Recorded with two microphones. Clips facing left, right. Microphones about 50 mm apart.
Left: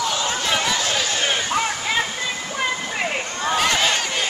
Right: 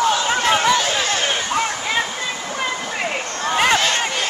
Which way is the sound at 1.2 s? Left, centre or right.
Centre.